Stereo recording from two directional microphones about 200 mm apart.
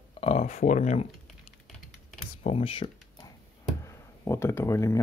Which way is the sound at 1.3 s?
Centre (ahead or behind).